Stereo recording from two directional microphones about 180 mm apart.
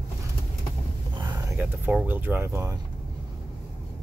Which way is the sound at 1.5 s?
10° right (ahead or behind).